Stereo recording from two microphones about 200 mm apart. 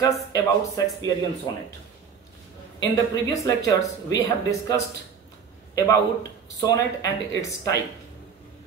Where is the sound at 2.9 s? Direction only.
15° left (ahead or behind).